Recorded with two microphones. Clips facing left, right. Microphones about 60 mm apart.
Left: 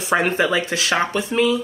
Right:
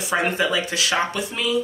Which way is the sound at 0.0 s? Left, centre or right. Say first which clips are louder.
Left 3 dB; left.